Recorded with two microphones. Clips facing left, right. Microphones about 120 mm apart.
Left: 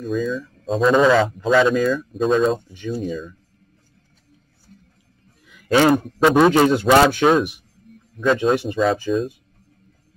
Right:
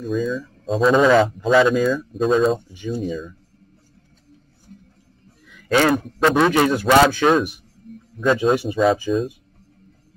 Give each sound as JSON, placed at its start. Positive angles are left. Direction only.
{"t": 0.0, "sound": "speech", "side_deg": 0}
{"t": 6.1, "sound": "speech", "side_deg": 5}
{"t": 6.5, "sound": "a man's voice", "side_deg": 20}
{"t": 7.2, "sound": "speech", "side_deg": 0}